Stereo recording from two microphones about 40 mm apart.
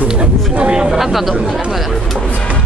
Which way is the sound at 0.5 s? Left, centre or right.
Right.